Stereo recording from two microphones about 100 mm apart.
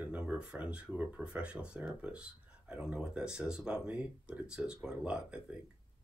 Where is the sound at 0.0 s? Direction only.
10° right (ahead or behind).